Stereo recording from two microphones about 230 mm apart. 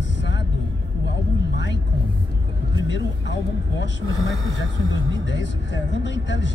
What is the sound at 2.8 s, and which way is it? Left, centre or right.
Vehicle, left.